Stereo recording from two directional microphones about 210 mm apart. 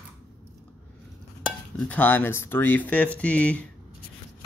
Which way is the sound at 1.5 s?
5° left (ahead or behind).